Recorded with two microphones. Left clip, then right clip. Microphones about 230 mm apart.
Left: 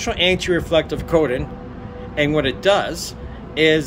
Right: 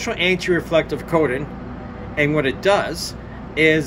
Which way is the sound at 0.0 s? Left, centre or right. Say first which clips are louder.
Left 1 dB; centre.